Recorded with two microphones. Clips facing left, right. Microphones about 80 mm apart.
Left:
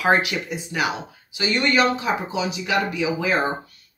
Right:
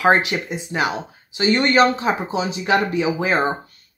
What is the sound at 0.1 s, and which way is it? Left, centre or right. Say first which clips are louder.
Speech: right 2 dB; right.